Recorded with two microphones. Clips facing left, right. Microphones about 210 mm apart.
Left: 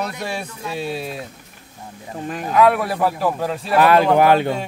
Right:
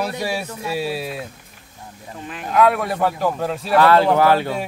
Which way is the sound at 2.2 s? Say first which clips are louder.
Left 6 dB; 45° left (ahead or behind).